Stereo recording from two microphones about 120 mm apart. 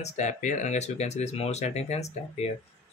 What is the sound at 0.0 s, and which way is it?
Speech, 80° left.